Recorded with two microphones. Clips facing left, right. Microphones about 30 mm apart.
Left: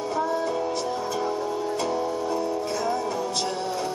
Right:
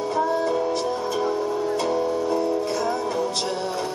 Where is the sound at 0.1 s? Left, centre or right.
Centre.